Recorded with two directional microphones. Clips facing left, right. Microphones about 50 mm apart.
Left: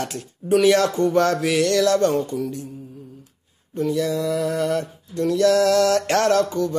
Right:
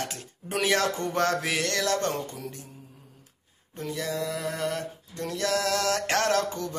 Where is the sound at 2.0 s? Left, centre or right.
Left.